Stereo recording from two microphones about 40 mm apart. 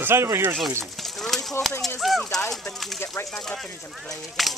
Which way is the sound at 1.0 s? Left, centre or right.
Centre.